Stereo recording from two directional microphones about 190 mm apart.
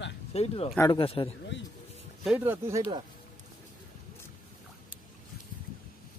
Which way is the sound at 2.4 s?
15° right (ahead or behind).